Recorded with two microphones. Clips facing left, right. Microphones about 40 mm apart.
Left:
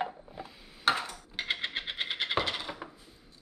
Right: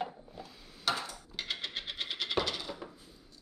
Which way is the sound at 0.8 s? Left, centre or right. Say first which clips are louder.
Left 5 dB; left.